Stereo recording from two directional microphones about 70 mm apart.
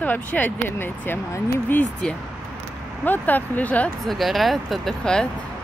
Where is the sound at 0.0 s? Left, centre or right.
Left.